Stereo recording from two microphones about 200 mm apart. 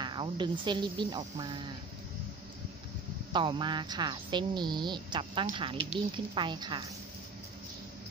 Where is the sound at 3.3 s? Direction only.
25° right (ahead or behind).